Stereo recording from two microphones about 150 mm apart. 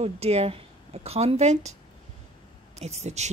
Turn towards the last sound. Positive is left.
turn(degrees=-50)  # may be behind; listen again after turning